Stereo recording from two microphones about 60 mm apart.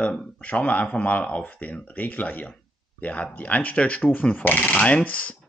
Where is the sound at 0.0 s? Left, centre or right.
Left.